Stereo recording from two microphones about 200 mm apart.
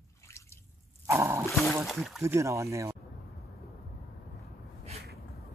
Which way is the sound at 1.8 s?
Centre (ahead or behind).